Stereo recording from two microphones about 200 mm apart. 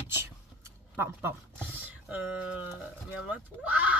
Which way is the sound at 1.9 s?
10° right (ahead or behind).